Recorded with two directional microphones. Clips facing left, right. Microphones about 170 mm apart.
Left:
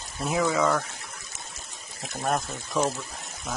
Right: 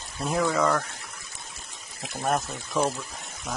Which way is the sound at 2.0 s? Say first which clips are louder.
Right 1 dB; centre (ahead or behind).